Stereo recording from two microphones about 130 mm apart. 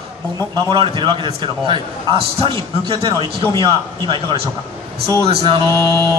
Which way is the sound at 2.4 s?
40° right (ahead or behind).